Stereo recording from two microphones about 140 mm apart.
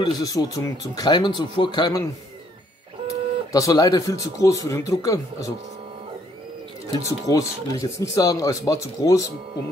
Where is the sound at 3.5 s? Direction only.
25° left (ahead or behind).